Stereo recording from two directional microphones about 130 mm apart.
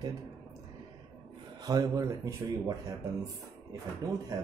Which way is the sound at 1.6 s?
30° right (ahead or behind).